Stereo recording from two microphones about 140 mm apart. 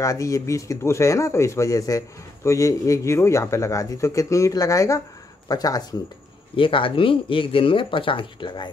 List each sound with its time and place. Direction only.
0.0 s speech: 20° left (ahead or behind)
6.5 s speech: 40° left (ahead or behind)